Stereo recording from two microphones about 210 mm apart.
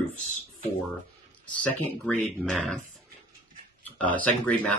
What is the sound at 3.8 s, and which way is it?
Speech, 5° left (ahead or behind).